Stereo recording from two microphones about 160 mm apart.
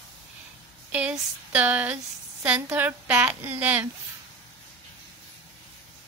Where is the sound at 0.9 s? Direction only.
10° right (ahead or behind).